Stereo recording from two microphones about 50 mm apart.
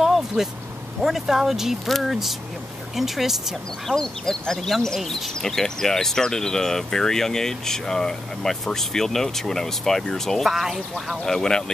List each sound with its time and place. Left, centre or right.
0.0 s vehicle: centre
1.0 s speech: centre
10.5 s speech: centre
11.2 s speech: centre